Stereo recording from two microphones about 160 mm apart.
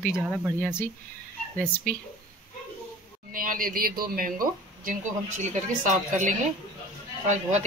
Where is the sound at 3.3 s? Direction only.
60° right (ahead or behind).